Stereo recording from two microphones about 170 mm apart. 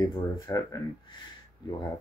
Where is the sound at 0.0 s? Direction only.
20° left (ahead or behind).